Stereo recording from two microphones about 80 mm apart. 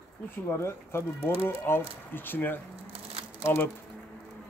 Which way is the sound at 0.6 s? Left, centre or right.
Left.